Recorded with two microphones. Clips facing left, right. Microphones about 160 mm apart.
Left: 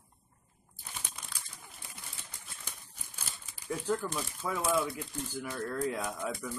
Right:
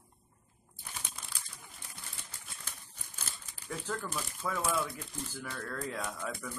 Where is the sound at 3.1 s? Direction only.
10° left (ahead or behind).